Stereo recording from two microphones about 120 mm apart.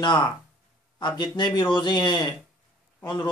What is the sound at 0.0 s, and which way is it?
A man's voice, 40° left (ahead or behind).